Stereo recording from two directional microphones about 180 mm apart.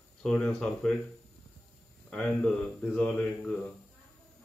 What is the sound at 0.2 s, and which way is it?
Speech, 5° left (ahead or behind).